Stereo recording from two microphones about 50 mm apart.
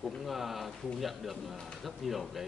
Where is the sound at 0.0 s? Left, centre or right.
Centre.